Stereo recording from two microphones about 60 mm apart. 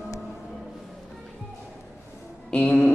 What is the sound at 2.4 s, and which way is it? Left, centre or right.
Music, centre.